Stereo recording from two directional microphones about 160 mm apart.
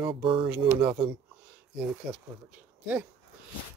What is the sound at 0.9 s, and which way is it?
Speech, 35° right (ahead or behind).